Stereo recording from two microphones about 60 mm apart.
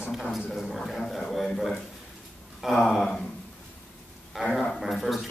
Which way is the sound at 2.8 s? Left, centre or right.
Centre.